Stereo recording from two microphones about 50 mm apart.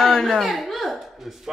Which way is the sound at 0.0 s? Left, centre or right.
Centre.